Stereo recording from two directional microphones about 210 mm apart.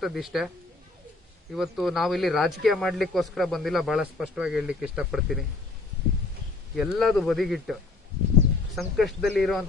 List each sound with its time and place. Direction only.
0.0 s speech: centre (ahead or behind)
1.5 s speech: centre (ahead or behind)
6.7 s speech: centre (ahead or behind)
8.7 s speech: centre (ahead or behind)